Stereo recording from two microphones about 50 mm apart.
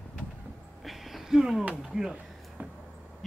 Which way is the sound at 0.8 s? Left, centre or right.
Centre.